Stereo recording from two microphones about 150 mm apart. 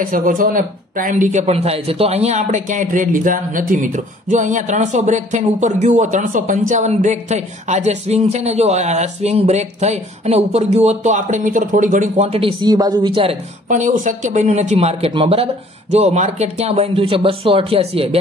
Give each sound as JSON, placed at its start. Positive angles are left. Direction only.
{"t": 0.0, "sound": "speech", "side_deg": -65}
{"t": 12.3, "sound": "speech", "side_deg": -40}
{"t": 13.7, "sound": "speech", "side_deg": -55}